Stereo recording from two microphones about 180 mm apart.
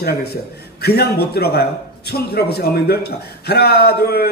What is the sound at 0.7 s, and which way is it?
A man's voice, 60° left (ahead or behind).